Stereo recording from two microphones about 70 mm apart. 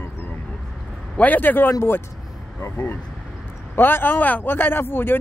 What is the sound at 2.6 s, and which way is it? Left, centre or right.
A man's voice, left.